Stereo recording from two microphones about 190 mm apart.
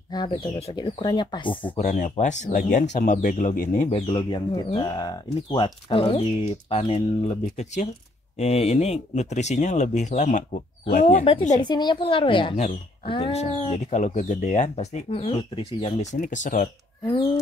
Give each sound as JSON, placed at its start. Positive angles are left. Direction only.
{"t": 0.1, "sound": "speech", "side_deg": 30}
{"t": 1.9, "sound": "speech", "side_deg": 40}
{"t": 3.9, "sound": "speech", "side_deg": 30}
{"t": 11.6, "sound": "speech", "side_deg": 25}